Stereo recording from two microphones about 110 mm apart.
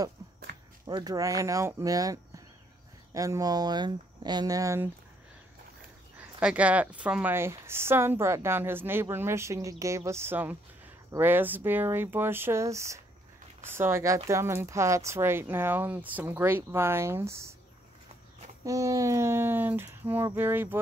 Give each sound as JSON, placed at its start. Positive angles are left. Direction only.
{"t": 0.8, "sound": "speech", "side_deg": -35}
{"t": 6.1, "sound": "speech", "side_deg": -10}
{"t": 7.3, "sound": "speech", "side_deg": -20}
{"t": 18.6, "sound": "speech", "side_deg": -30}